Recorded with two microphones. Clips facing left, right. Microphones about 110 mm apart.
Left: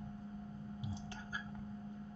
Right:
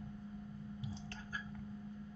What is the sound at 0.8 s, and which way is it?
Whispering, 15° left (ahead or behind).